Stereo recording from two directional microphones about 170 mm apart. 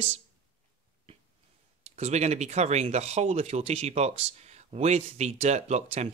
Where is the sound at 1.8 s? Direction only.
40° right (ahead or behind).